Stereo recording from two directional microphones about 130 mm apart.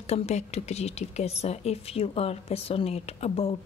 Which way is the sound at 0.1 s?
55° left (ahead or behind).